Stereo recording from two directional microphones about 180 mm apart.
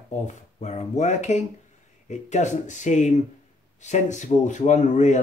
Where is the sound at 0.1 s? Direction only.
40° left (ahead or behind).